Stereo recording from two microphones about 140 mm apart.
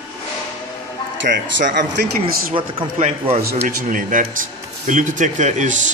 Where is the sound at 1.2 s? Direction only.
90° right.